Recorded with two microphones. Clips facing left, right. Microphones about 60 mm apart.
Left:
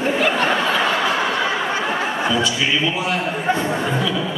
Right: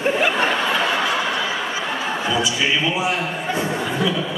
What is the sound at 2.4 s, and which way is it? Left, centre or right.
Speech, centre.